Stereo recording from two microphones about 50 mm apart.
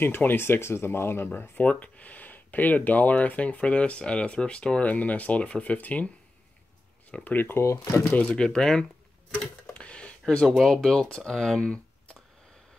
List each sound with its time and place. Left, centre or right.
0.0 s speech: left
1.6 s speech: left
7.1 s speech: left
7.3 s speech: left
8.0 s speech: left
8.5 s speech: centre